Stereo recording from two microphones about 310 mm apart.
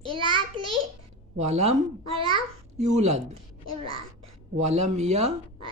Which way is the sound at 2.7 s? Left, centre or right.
Right.